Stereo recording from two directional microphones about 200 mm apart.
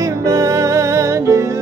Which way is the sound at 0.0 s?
15° right (ahead or behind).